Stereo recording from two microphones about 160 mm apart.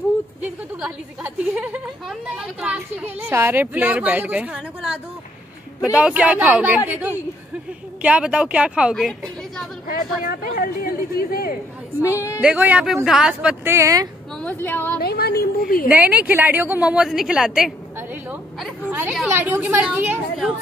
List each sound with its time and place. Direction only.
0.4 s a woman's voice: 10° right (ahead or behind)
9.8 s speech: 65° left (ahead or behind)
12.0 s a woman's voice: 20° left (ahead or behind)
12.4 s a woman's voice: 10° right (ahead or behind)
14.4 s a woman's voice: 10° left (ahead or behind)
15.0 s speech: 80° left
15.9 s a woman's voice: 10° right (ahead or behind)
18.9 s a woman's voice: 10° right (ahead or behind)